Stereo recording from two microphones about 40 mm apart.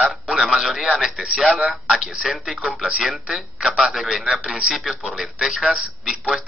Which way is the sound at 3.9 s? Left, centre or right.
Centre.